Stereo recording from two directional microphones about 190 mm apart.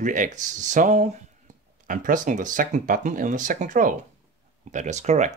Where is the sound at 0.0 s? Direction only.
45° right (ahead or behind).